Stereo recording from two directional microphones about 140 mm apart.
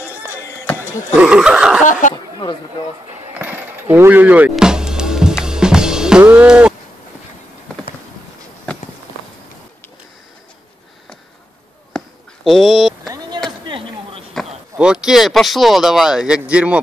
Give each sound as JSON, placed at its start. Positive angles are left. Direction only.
{"t": 1.1, "sound": "snicker", "side_deg": -5}
{"t": 1.9, "sound": "speech", "side_deg": 65}
{"t": 2.1, "sound": "chatter", "side_deg": 30}
{"t": 3.1, "sound": "music", "side_deg": -15}
{"t": 11.9, "sound": "a sound", "side_deg": 5}
{"t": 13.7, "sound": "a sound", "side_deg": -40}
{"t": 14.3, "sound": "speech", "side_deg": -5}